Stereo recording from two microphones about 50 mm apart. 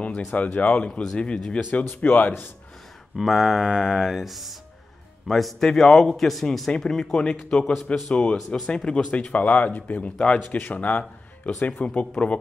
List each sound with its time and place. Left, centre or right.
0.3 s speech: left
1.6 s speech: left
3.2 s a man's voice: centre; by 12.1 s left